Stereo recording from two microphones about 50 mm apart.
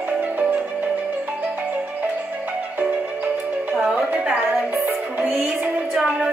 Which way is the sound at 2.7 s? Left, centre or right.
Right.